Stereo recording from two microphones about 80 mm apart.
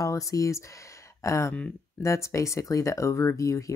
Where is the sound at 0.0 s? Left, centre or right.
Left.